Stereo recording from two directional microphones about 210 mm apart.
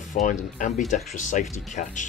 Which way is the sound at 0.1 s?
40° left (ahead or behind).